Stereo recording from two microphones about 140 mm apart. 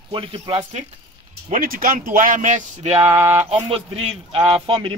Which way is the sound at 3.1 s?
15° right (ahead or behind).